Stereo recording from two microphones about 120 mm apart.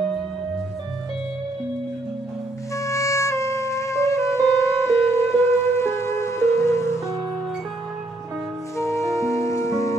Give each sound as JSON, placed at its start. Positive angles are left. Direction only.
{"t": 2.7, "sound": "music", "side_deg": 25}
{"t": 8.7, "sound": "music", "side_deg": 25}